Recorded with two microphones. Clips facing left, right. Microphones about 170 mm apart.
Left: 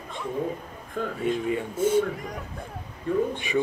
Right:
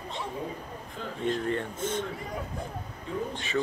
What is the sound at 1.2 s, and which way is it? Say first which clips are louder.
Speech: left 1 dB; 10° left (ahead or behind).